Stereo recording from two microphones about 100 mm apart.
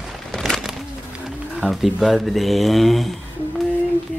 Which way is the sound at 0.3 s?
5° left (ahead or behind).